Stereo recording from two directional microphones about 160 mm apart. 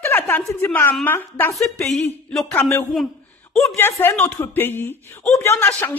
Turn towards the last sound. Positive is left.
turn(degrees=10)  # may be behind; listen again after turning